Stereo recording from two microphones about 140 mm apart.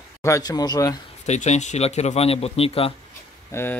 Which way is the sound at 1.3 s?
55° left (ahead or behind).